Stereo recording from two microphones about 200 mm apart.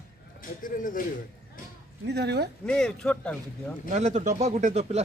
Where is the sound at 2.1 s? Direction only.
55° right (ahead or behind).